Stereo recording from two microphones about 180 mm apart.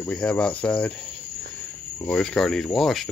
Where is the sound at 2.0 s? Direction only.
5° left (ahead or behind).